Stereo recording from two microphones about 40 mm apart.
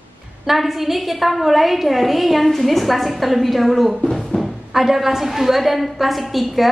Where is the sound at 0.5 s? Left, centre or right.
Centre.